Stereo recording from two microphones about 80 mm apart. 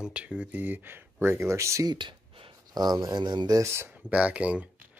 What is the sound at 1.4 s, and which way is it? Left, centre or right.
Speech, right.